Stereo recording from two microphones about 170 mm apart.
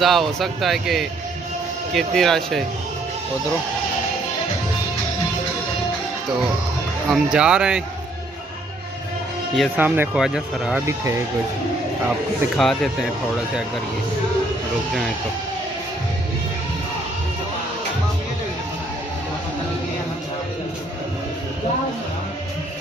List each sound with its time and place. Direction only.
0.0 s speech: centre (ahead or behind)
7.1 s speech: 5° right (ahead or behind)
9.8 s speech: 10° right (ahead or behind)
10.9 s speech: 15° right (ahead or behind)
12.5 s speech: centre (ahead or behind)